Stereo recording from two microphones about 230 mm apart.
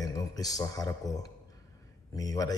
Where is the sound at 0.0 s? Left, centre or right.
Centre.